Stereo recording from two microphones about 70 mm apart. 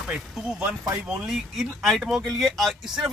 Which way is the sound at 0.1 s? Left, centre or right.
Centre.